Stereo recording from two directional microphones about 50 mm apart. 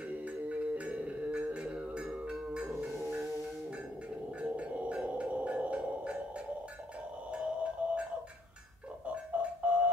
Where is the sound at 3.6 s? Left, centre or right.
Right.